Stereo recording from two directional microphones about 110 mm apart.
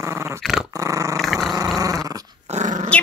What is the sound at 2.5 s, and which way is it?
Dog, 80° right.